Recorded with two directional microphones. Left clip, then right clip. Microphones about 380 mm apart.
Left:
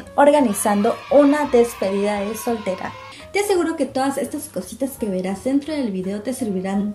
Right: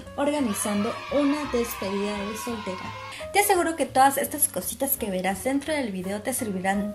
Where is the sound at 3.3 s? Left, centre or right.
Right.